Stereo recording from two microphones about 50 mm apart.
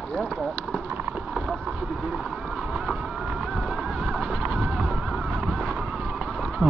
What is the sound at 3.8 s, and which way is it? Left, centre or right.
Horse, centre.